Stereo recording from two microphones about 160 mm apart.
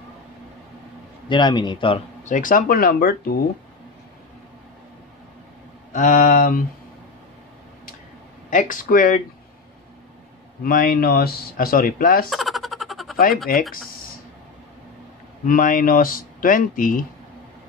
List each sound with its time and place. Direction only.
1.3 s a man's voice: 30° left (ahead or behind)
2.2 s speech: 55° left (ahead or behind); by 3.3 s 80° left
5.9 s speech: 55° left (ahead or behind)
8.5 s speech: 55° left (ahead or behind)
10.6 s speech: 70° left (ahead or behind)
12.3 s a sound: centre (ahead or behind)
13.5 s speech: 65° left (ahead or behind)
15.4 s speech: 55° left (ahead or behind)